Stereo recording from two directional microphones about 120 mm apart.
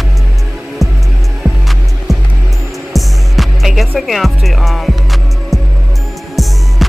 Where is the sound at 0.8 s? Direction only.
25° right (ahead or behind).